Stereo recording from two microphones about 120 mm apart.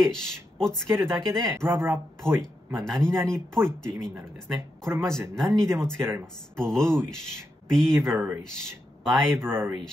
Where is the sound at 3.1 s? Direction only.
25° right (ahead or behind).